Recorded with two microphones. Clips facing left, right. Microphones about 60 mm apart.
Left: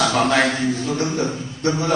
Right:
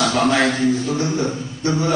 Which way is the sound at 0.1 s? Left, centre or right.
Centre.